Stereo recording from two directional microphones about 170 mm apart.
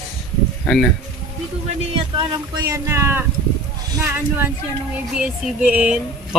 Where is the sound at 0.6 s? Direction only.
5° left (ahead or behind).